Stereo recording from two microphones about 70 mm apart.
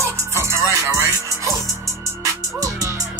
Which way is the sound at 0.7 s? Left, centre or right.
Right.